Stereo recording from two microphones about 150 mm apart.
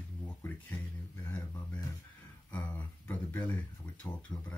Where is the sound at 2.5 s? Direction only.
10° left (ahead or behind).